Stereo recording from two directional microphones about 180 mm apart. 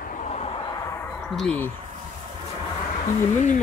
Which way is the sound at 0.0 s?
45° left (ahead or behind).